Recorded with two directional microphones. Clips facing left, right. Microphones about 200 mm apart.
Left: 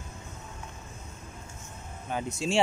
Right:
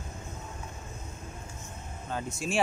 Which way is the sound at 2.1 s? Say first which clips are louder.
Left 2 dB; 15° left (ahead or behind).